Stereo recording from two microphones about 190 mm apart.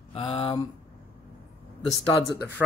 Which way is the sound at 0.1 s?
30° left (ahead or behind).